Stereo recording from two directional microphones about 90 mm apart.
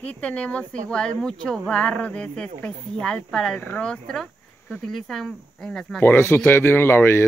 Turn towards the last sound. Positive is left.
turn(degrees=25)  # may be behind; listen again after turning